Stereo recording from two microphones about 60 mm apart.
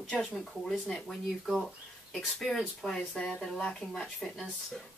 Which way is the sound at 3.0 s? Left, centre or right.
Centre.